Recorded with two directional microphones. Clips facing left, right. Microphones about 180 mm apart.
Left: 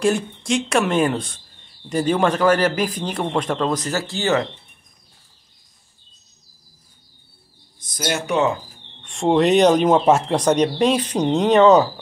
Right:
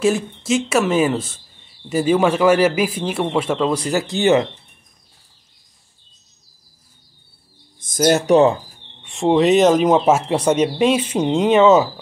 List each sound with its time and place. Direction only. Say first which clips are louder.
0.0 s speech: right 2 dB; 5° right (ahead or behind); by 4.5 s 20° right (ahead or behind)
7.8 s speech: right 9 dB; 45° right (ahead or behind)
9.0 s speech: right 2 dB; 5° right (ahead or behind)